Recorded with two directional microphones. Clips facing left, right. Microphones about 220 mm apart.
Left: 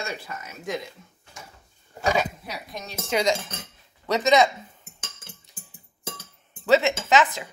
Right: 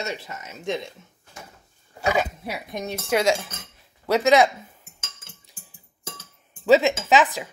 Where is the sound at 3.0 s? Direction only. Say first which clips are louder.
Right 2 dB; 5° right (ahead or behind).